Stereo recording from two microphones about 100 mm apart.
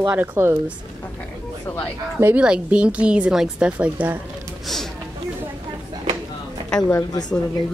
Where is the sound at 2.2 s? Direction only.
15° right (ahead or behind).